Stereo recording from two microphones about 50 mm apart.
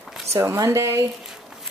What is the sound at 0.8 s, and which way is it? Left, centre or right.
Speech, right.